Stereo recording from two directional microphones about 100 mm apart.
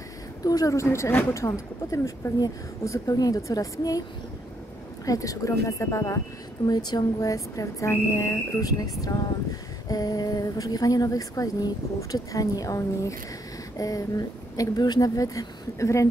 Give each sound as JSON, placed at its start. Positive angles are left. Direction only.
{"t": 0.4, "sound": "a woman's voice", "side_deg": 35}
{"t": 5.0, "sound": "a woman's voice", "side_deg": 35}
{"t": 6.7, "sound": "a woman's voice", "side_deg": 45}